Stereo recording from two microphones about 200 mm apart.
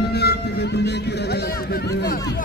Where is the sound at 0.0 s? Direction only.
55° left (ahead or behind).